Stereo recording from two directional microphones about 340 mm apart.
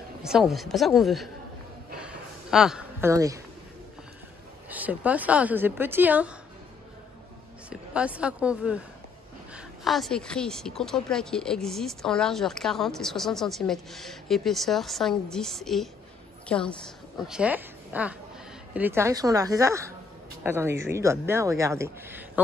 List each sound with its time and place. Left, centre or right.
0.2 s speech: centre
2.0 s a sound: centre
4.6 s speech: centre
7.7 s speech: centre
9.8 s a woman's voice: centre